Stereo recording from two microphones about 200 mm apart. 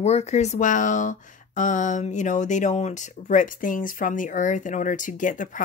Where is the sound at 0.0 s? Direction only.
35° left (ahead or behind).